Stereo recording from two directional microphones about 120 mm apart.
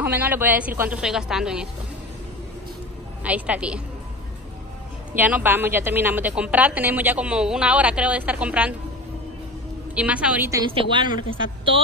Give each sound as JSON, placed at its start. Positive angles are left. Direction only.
{"t": 0.0, "sound": "a woman's voice", "side_deg": -15}
{"t": 3.3, "sound": "a woman's voice", "side_deg": -10}
{"t": 5.1, "sound": "a woman's voice", "side_deg": -15}
{"t": 9.9, "sound": "a woman's voice", "side_deg": -10}
{"t": 10.7, "sound": "a woman's voice", "side_deg": -45}